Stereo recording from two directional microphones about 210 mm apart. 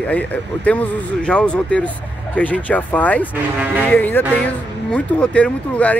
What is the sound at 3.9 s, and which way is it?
Speech, 10° left (ahead or behind).